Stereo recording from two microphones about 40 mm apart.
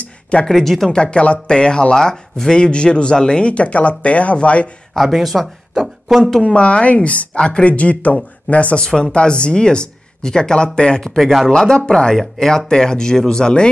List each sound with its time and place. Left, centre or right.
0.0 s a sound: left
0.5 s speech: centre
0.9 s speech: left
4.9 s speech: centre
6.4 s speech: left
7.3 s speech: left
8.8 s speech: left
11.1 s speech: centre
11.5 s speech: centre